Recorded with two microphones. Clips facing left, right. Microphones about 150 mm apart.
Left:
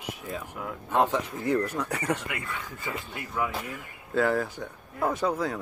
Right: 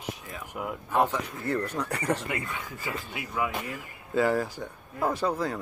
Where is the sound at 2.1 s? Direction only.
30° right (ahead or behind).